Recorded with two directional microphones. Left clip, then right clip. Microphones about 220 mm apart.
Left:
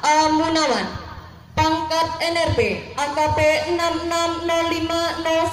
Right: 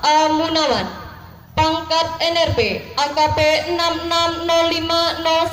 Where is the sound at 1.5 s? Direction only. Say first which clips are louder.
Right 2 dB; 35° right (ahead or behind).